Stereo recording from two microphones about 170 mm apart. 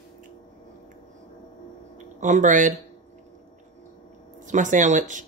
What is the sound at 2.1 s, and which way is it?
Speech, 45° right (ahead or behind).